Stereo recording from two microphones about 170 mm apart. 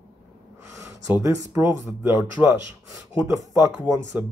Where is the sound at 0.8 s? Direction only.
20° right (ahead or behind).